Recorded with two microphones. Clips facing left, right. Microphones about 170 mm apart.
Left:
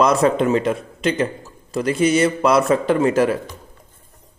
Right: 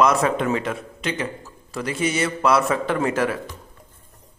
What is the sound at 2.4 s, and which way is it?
Speech, 15° left (ahead or behind).